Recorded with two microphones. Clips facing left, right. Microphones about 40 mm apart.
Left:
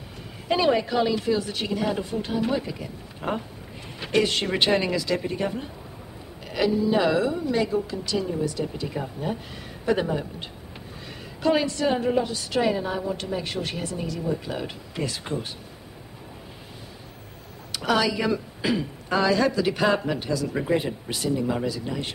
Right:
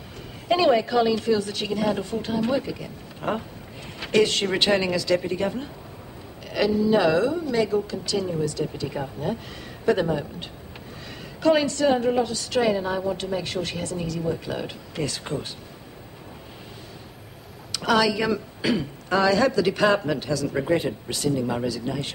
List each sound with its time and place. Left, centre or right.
0.5 s speech: centre
4.0 s speech: centre
8.8 s speech: centre
9.8 s speech: centre
11.4 s speech: centre
17.7 s speech: centre